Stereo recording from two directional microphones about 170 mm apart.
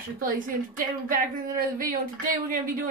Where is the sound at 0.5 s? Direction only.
55° right (ahead or behind).